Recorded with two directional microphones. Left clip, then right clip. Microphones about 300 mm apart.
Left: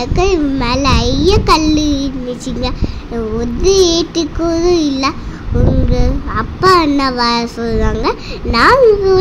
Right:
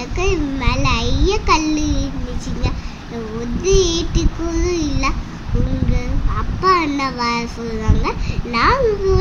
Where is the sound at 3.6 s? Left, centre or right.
Centre.